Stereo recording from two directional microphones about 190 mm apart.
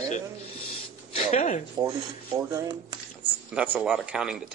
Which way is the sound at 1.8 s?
15° right (ahead or behind).